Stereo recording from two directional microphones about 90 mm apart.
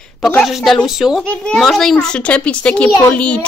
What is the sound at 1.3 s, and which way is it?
A woman's voice, 10° left (ahead or behind).